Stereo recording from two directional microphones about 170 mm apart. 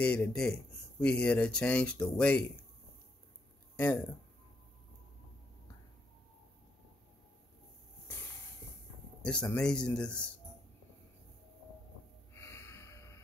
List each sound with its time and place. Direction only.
0.0 s speech: 5° left (ahead or behind)
3.7 s speech: 10° left (ahead or behind)
9.2 s a man's voice: 5° left (ahead or behind)
12.4 s snort: 15° left (ahead or behind)